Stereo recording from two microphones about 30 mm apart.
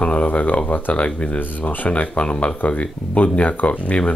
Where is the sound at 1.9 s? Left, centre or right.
Left.